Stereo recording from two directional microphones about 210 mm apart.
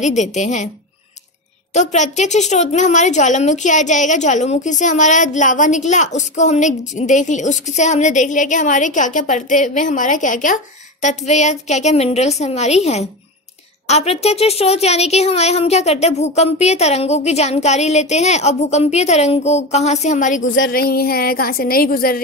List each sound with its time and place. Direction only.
0.0 s a woman's voice: 35° left (ahead or behind)
1.7 s a woman's voice: 35° left (ahead or behind)
20.7 s a woman's voice: 45° left (ahead or behind)